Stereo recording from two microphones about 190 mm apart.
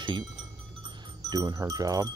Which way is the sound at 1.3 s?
20° right (ahead or behind).